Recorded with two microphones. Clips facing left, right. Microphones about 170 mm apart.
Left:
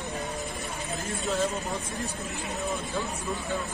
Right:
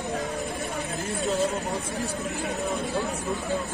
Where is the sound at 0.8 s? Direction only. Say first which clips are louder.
Right 3 dB; 65° right (ahead or behind).